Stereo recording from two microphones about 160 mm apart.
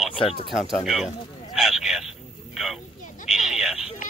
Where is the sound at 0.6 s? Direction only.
Centre (ahead or behind).